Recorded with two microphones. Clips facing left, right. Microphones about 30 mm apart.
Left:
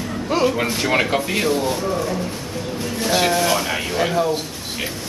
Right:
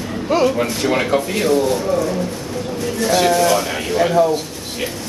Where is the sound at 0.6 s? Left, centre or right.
Centre.